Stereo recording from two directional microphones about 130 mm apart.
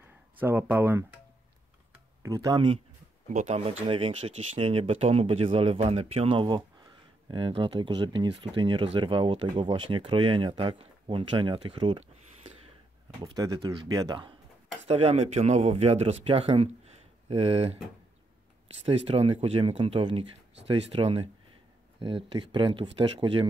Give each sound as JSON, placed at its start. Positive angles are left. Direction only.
{"t": 0.4, "sound": "speech", "side_deg": -15}
{"t": 2.2, "sound": "speech", "side_deg": -30}
{"t": 3.3, "sound": "speech", "side_deg": -60}
{"t": 6.4, "sound": "speech", "side_deg": -35}
{"t": 13.2, "sound": "speech", "side_deg": -30}
{"t": 14.9, "sound": "a man's voice", "side_deg": -50}
{"t": 18.9, "sound": "speech", "side_deg": -50}